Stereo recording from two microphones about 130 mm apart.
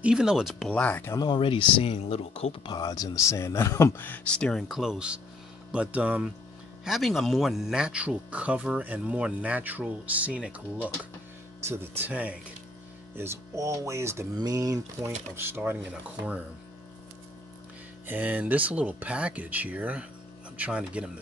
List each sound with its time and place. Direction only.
0.0 s speech: 5° right (ahead or behind)
0.7 s speech: 10° left (ahead or behind)
1.1 s speech: 35° left (ahead or behind)
2.7 s speech: 30° left (ahead or behind); by 16.4 s 10° right (ahead or behind)
18.0 s speech: 15° right (ahead or behind)